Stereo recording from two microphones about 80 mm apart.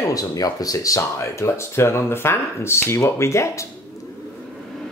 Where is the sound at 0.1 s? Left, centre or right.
Left.